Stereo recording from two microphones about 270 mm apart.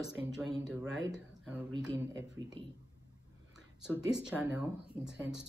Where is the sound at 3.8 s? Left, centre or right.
Centre.